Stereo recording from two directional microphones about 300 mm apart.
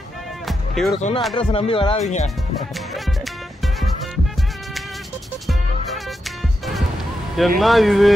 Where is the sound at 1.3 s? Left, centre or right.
Centre.